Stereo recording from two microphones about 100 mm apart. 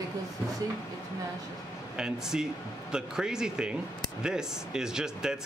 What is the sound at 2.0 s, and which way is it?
Speech, 5° right (ahead or behind).